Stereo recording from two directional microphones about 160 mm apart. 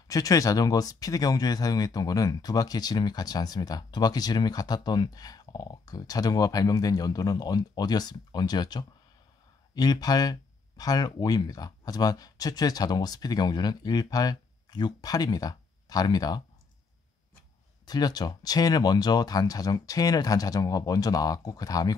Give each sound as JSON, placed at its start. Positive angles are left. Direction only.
{"t": 0.1, "sound": "speech", "side_deg": 20}
{"t": 17.8, "sound": "speech", "side_deg": 25}